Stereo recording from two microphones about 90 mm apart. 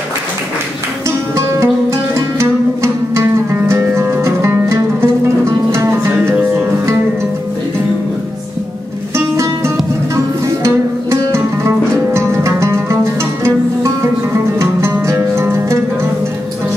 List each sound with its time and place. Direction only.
1.3 s music: 35° right (ahead or behind)
9.1 s music: 30° right (ahead or behind)